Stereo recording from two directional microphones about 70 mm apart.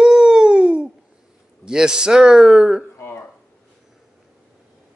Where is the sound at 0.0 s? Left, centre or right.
Centre.